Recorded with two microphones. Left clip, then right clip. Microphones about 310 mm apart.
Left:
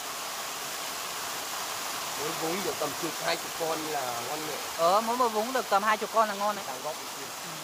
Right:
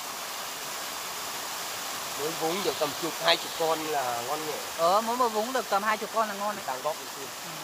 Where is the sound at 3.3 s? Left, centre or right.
Right.